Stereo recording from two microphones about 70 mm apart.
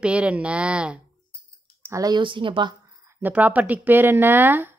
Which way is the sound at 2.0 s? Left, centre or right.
Right.